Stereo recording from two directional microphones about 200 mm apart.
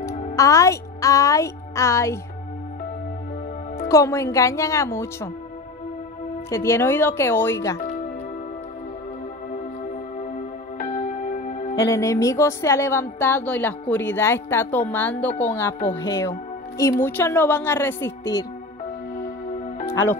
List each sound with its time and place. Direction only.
0.4 s a woman's voice: 15° left (ahead or behind)
3.9 s a woman's voice: 15° left (ahead or behind)
6.5 s a woman's voice: 15° left (ahead or behind)
10.2 s music: 40° left (ahead or behind)
11.7 s a woman's voice: 15° left (ahead or behind)